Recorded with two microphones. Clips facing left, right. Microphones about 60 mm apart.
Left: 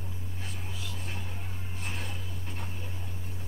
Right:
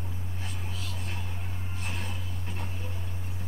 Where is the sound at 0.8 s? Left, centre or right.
Centre.